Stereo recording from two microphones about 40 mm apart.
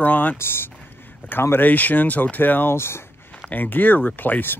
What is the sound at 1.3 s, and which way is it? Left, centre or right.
Speech, left.